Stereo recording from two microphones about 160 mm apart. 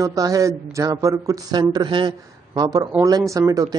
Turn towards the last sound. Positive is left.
turn(degrees=-20)  # may be behind; listen again after turning